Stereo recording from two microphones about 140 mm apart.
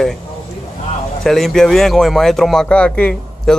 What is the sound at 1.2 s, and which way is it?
Speech, 5° left (ahead or behind).